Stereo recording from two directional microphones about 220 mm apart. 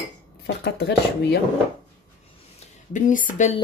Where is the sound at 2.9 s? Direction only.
35° left (ahead or behind).